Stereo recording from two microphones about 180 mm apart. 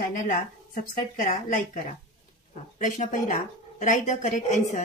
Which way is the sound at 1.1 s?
45° left (ahead or behind).